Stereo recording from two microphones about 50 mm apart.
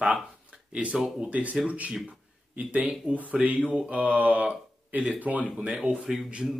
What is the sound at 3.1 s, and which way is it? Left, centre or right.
Speech, right.